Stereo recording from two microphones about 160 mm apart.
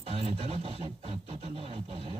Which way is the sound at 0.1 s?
35° right (ahead or behind).